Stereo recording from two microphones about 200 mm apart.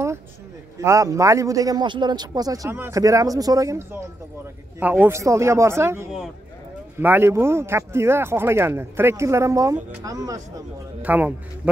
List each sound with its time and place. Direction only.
0.7 s a man's voice: 15° right (ahead or behind)
11.0 s a man's voice: 5° right (ahead or behind)